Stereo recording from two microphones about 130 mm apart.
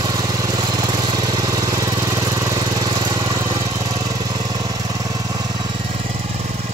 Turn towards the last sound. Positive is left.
turn(degrees=-30)  # may be behind; listen again after turning